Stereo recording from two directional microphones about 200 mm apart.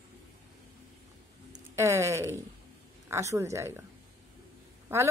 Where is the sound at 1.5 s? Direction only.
15° right (ahead or behind).